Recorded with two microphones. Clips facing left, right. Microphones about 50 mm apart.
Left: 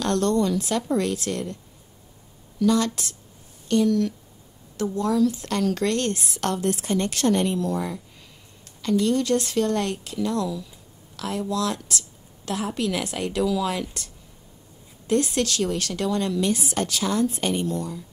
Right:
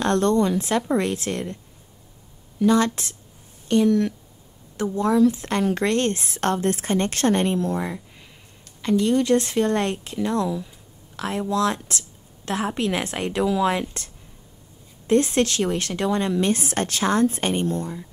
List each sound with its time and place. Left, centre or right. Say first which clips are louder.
0.0 s a woman's voice: right 2 dB; right
2.6 s a woman's voice: right 2 dB; right
16.5 s a woman's voice: right 1 dB; right